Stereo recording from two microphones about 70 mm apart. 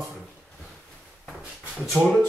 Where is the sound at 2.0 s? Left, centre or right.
Centre.